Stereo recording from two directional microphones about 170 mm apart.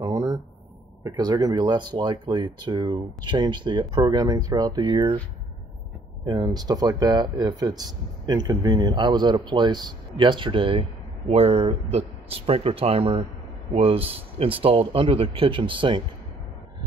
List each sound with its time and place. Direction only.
0.0 s a sound: 20° right (ahead or behind)
1.0 s speech: 25° right (ahead or behind)
6.2 s speech: 25° right (ahead or behind)